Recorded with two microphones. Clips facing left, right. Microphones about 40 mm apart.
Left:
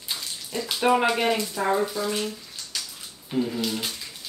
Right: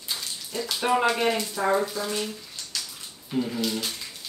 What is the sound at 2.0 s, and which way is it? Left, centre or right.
Bathtub, centre.